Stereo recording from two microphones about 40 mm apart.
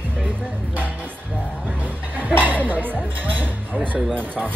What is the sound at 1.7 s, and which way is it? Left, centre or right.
Speech, right.